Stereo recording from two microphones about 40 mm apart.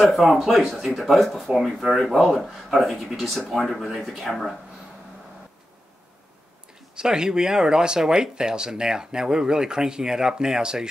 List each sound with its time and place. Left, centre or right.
0.0 s speech: centre
7.0 s speech: centre